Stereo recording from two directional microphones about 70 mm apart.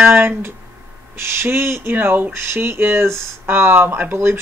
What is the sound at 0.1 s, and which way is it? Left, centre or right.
Speech, right.